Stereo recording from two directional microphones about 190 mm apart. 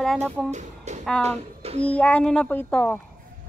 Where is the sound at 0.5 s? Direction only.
40° right (ahead or behind).